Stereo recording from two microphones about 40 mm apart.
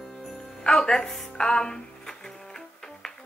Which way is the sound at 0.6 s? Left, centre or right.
Centre.